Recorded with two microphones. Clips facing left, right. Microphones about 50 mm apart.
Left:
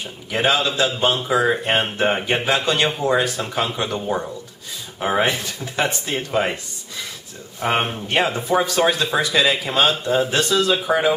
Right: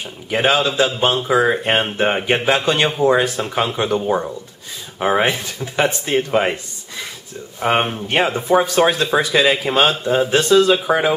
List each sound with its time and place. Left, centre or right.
0.3 s speech: centre
7.6 s speech: centre